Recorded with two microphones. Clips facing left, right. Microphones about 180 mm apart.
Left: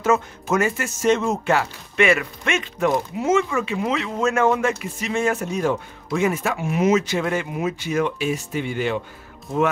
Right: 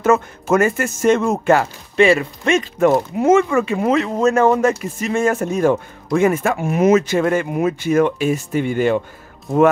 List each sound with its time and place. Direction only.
0.0 s speech: 50° right (ahead or behind)
2.0 s speech: 30° right (ahead or behind)
2.8 s speech: 55° right (ahead or behind)